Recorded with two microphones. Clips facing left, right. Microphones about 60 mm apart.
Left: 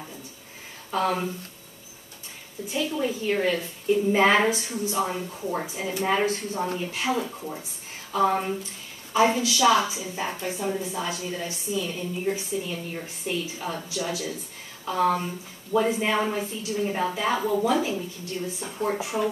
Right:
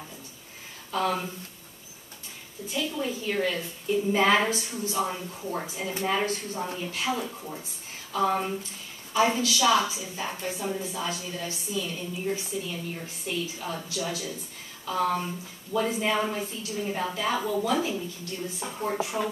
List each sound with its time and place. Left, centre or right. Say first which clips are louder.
0.9 s a woman's voice: left 2 dB; centre
2.7 s a woman's voice: left 3 dB; centre
9.1 s a woman's voice: left 2 dB; left